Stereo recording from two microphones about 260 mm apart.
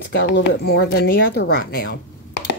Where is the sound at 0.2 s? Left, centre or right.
Left.